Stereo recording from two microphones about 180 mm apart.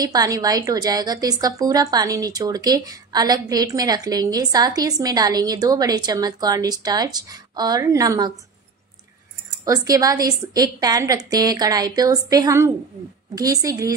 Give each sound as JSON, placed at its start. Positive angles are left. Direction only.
{"t": 0.0, "sound": "a woman's voice", "side_deg": -20}
{"t": 9.7, "sound": "a woman's voice", "side_deg": -20}